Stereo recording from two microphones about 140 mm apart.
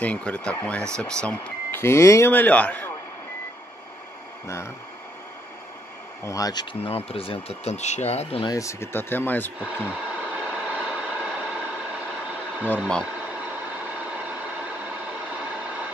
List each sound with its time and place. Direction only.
0.0 s speech: 10° left (ahead or behind)
6.2 s speech: 25° left (ahead or behind); by 8.5 s 45° left (ahead or behind)
8.5 s speech: 20° left (ahead or behind)
9.8 s train: 10° right (ahead or behind)
12.6 s speech: 10° left (ahead or behind)